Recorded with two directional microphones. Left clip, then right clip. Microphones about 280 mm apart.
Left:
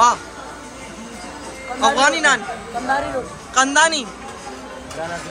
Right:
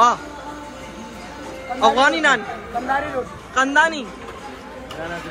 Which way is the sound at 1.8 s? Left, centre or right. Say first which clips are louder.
Even; centre.